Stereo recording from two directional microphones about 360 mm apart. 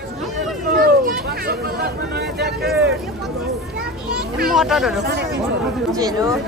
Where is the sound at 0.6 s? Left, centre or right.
Right.